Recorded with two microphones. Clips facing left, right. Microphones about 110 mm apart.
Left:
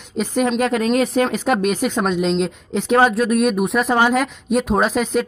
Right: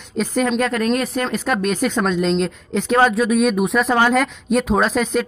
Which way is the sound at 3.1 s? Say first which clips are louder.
Even; centre (ahead or behind).